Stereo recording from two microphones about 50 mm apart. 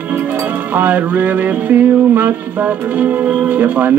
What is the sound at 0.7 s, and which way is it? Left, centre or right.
Music, right.